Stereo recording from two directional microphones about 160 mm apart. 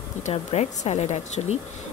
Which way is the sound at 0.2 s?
40° left (ahead or behind).